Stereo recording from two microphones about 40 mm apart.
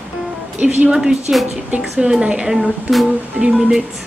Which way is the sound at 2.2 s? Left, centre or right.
Right.